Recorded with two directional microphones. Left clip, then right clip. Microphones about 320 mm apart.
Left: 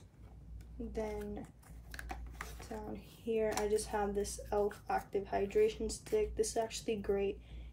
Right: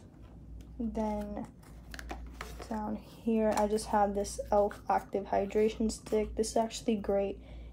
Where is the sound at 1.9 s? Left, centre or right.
Centre.